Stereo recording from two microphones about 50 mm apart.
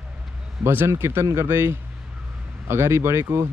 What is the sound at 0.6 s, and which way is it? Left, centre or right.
Speech, right.